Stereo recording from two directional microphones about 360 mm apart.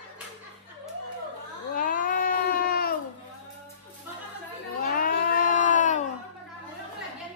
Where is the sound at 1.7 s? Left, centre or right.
Left.